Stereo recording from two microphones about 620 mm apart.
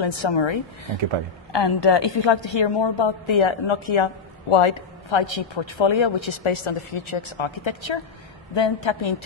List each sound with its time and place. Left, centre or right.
0.0 s a woman's voice: left